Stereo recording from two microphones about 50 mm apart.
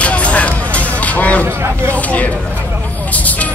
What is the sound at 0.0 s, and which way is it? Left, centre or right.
Music, left.